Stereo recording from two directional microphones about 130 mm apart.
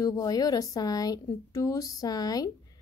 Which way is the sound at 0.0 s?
30° left (ahead or behind).